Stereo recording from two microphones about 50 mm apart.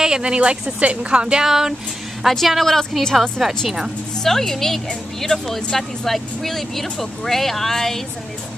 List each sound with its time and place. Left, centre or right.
0.0 s speech: centre
1.4 s a woman's voice: centre
4.2 s a woman's voice: centre